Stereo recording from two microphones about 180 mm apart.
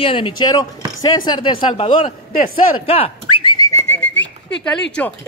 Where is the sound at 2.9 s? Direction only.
30° left (ahead or behind); by 4.3 s 10° left (ahead or behind).